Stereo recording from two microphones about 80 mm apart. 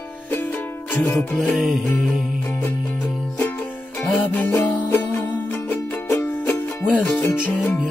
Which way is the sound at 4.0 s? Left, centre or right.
Centre.